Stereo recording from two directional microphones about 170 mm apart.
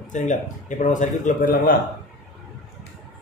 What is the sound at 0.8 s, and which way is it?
Speech, 50° left (ahead or behind).